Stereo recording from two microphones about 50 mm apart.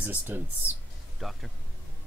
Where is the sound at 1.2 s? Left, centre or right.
Centre.